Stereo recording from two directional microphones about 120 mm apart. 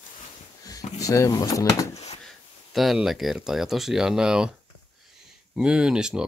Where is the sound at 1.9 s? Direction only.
65° left (ahead or behind).